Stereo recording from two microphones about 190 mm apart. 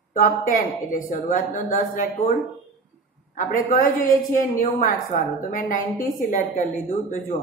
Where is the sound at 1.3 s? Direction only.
45° left (ahead or behind).